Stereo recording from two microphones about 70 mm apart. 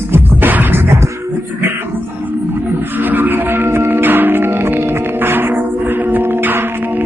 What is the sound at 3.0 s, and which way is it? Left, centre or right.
Music, right.